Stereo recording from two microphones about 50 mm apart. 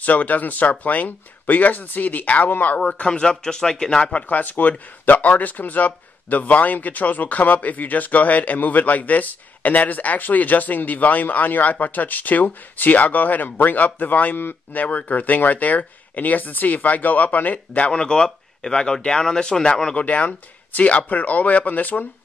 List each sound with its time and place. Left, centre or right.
0.0 s speech: left
2.8 s a man's voice: left
4.1 s a man's voice: left; by 20.0 s centre
20.0 s speech: left